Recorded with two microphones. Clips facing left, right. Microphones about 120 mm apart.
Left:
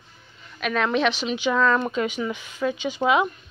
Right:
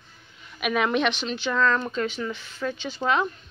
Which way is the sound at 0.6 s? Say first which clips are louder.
Left 1 dB; 5° right (ahead or behind).